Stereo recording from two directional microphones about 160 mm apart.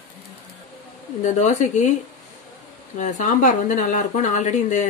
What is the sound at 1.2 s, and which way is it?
Speech, 50° left (ahead or behind).